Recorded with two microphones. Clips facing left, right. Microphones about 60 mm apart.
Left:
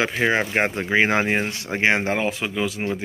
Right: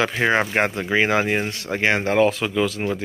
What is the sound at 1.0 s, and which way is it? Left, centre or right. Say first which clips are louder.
Speech: even; left.